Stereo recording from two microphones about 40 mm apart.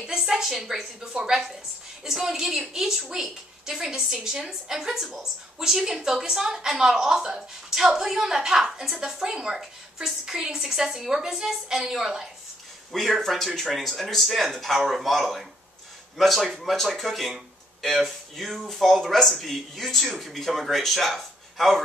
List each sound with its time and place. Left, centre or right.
0.2 s speech: centre
12.9 s speech: centre